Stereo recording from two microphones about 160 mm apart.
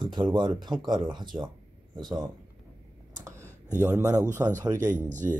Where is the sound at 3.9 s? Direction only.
20° right (ahead or behind).